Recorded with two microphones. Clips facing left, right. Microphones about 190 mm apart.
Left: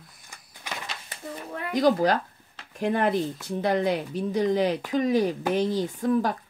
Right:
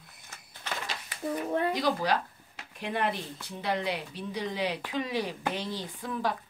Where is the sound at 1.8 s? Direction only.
45° left (ahead or behind).